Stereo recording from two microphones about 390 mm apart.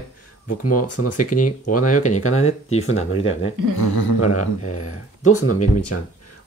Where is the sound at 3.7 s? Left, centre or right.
Left.